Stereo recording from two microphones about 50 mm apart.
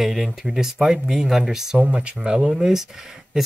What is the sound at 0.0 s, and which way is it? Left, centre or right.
Speech, centre.